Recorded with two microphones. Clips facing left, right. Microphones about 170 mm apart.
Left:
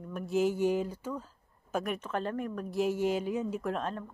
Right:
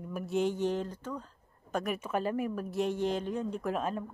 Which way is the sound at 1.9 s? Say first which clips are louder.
Right 2 dB; 10° right (ahead or behind).